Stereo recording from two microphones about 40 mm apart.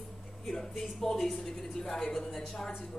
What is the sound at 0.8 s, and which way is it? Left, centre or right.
A woman's voice, centre.